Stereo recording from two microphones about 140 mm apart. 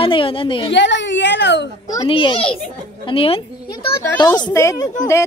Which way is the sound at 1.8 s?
25° left (ahead or behind).